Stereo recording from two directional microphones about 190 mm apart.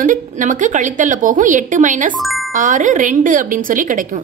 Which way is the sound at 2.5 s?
40° right (ahead or behind).